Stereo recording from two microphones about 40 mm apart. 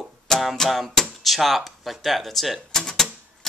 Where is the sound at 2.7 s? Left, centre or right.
Centre.